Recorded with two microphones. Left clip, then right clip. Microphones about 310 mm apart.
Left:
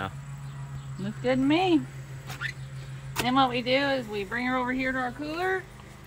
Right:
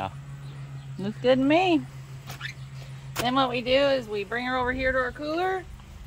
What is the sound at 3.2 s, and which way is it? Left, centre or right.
Speech, right.